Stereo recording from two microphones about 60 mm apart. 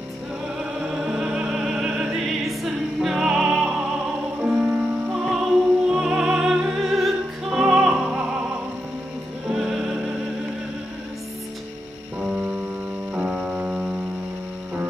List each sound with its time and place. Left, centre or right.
0.7 s music: centre
4.4 s music: right
9.5 s music: centre
12.2 s music: centre
13.1 s piano: centre